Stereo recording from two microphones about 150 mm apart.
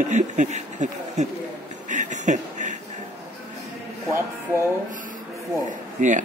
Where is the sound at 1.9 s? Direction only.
55° right (ahead or behind).